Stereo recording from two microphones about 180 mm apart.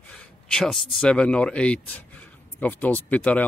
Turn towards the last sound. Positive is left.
turn(degrees=10)  # may be behind; listen again after turning